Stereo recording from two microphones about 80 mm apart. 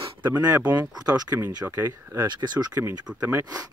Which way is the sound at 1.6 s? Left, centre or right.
Centre.